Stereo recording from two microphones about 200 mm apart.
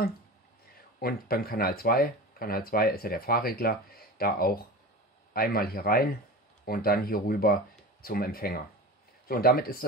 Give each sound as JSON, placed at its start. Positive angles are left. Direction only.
{"t": 0.9, "sound": "speech", "side_deg": 50}